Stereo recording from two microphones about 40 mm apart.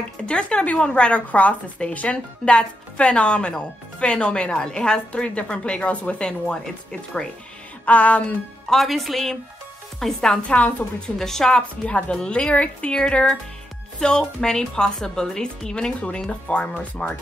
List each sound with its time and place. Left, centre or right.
0.3 s speech: left
6.2 s speech: left
7.8 s speech: left
8.6 s speech: centre
10.5 s speech: left
11.1 s speech: centre
11.8 s speech: left
13.9 s speech: centre; by 17.1 s left